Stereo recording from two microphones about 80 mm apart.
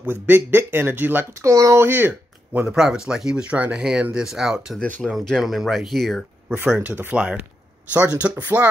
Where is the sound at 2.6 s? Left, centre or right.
Centre.